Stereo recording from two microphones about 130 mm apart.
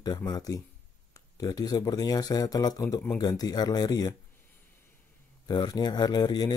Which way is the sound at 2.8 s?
15° left (ahead or behind).